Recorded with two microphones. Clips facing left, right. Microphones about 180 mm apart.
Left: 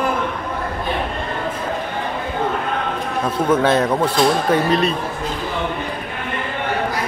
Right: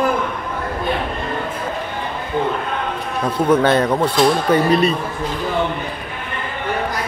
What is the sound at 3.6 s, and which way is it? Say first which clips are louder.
A man's voice: right 1 dB; centre (ahead or behind).